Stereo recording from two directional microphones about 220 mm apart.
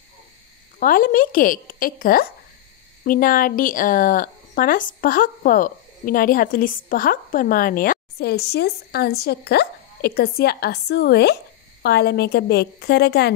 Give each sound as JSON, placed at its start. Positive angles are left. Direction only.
{"t": 0.7, "sound": "a woman's voice", "side_deg": 40}